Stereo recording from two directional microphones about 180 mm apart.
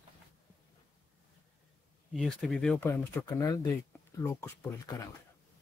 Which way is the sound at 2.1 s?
Centre (ahead or behind).